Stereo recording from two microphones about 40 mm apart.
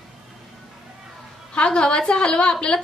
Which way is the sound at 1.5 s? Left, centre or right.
Left.